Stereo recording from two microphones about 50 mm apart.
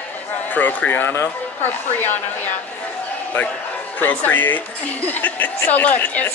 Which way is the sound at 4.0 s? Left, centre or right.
Left.